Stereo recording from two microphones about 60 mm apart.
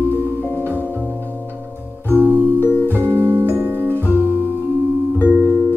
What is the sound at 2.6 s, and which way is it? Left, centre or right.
Music, left.